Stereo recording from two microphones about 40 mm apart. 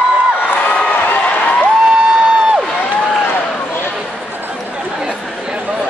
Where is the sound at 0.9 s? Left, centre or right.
Left.